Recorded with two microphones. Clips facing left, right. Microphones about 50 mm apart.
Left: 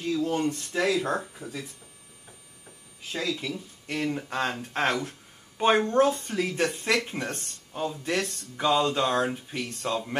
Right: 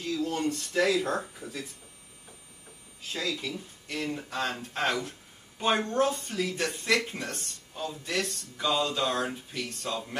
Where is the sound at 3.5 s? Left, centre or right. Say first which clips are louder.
Left 4 dB; left.